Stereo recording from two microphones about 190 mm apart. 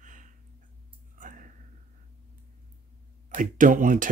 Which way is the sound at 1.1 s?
45° right (ahead or behind).